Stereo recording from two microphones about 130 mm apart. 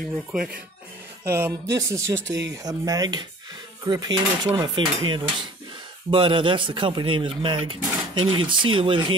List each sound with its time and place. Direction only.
1.2 s speech: 20° right (ahead or behind); by 9.1 s 40° right (ahead or behind)